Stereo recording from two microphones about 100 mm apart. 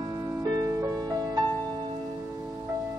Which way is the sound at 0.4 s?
35° right (ahead or behind).